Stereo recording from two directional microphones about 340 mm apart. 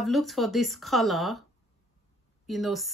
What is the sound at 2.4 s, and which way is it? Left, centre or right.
Speech, centre.